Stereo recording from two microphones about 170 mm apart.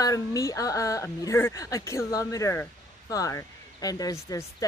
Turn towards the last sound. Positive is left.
turn(degrees=20)  # may be behind; listen again after turning